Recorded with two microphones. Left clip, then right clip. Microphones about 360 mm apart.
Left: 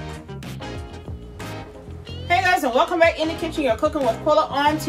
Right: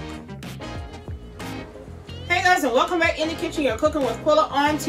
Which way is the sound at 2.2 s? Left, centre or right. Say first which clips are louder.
Even; centre.